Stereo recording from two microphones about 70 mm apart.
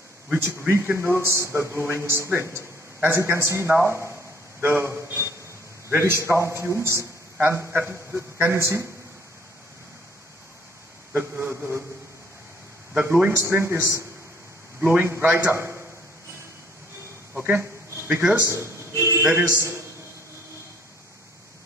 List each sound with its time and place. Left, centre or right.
0.4 s a man's voice: right
1.2 s a man's voice: right
11.1 s a man's voice: right
12.9 s a man's voice: right
13.5 s a man's voice: right
17.4 s a sound: right
18.4 s a man's voice: right